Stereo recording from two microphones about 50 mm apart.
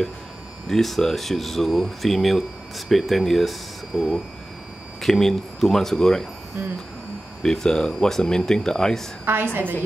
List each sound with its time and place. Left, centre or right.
0.7 s speech: centre
7.4 s speech: centre
9.2 s a woman's voice: right